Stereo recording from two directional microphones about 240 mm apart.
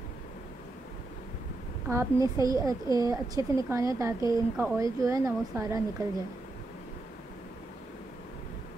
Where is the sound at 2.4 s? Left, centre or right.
Centre.